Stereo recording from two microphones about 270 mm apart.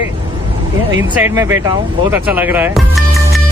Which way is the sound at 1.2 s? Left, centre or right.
Centre.